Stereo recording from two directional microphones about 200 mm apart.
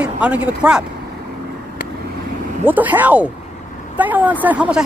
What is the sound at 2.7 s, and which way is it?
Speech, 10° right (ahead or behind).